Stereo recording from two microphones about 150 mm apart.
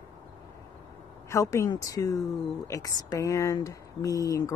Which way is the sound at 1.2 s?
20° left (ahead or behind).